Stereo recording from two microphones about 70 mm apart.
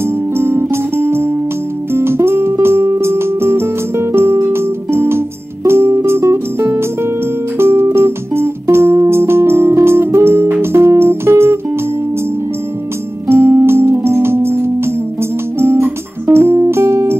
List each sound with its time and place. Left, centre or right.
0.4 s music: right
13.3 s music: right